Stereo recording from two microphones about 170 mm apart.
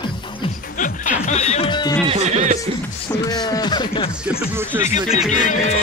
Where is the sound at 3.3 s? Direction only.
25° left (ahead or behind).